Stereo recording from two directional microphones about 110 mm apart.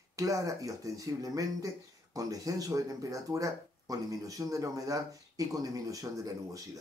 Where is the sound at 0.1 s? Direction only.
30° right (ahead or behind).